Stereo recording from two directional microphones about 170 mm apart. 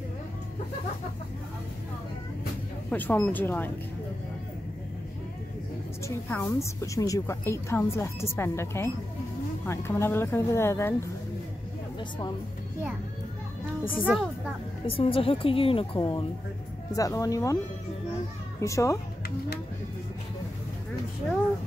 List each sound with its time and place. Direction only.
2.9 s a woman's voice: 10° left (ahead or behind)
6.0 s a woman's voice: 15° left (ahead or behind)
13.9 s a child's voice: 5° right (ahead or behind)
14.9 s a woman's voice: 35° left (ahead or behind)
16.9 s speech: 20° left (ahead or behind)
18.6 s a woman's voice: 20° left (ahead or behind)